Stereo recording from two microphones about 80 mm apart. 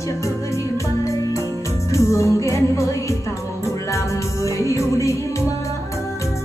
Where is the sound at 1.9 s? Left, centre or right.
Left.